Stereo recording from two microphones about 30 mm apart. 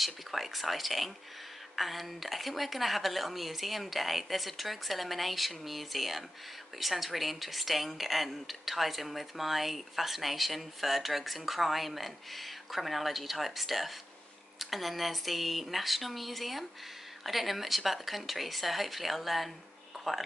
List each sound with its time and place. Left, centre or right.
0.0 s a woman's voice: centre